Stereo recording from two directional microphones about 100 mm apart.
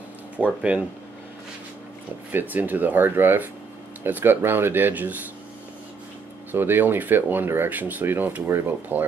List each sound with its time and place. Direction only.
0.5 s speech: 10° right (ahead or behind)
2.3 s speech: 15° right (ahead or behind)
6.5 s speech: 20° right (ahead or behind)